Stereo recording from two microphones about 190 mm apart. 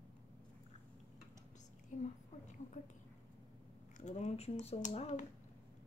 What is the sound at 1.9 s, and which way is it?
Whispering, 40° left (ahead or behind).